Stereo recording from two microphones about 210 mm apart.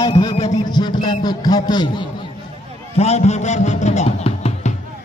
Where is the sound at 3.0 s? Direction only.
30° left (ahead or behind).